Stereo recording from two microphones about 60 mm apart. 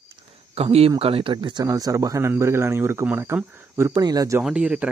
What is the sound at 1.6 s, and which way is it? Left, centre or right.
A man's voice, right.